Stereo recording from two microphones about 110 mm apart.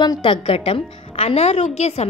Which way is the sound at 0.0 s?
45° left (ahead or behind).